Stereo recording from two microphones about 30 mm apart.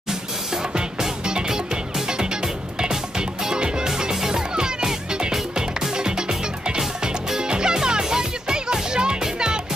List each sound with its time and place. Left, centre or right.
1.2 s music: right